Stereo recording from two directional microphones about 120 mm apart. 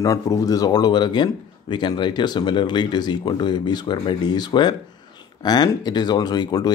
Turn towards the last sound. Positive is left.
turn(degrees=35)  # may be behind; listen again after turning